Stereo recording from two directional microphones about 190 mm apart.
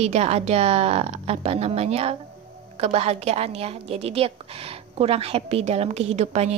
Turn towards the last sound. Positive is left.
turn(degrees=-35)  # may be behind; listen again after turning